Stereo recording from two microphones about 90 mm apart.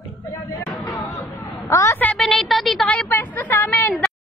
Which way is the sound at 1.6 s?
35° left (ahead or behind).